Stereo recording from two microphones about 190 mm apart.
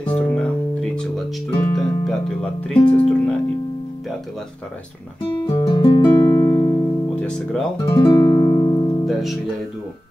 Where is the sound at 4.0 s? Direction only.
Centre (ahead or behind).